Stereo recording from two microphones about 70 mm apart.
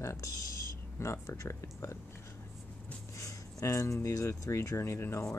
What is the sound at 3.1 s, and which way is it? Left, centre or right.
Speech, left.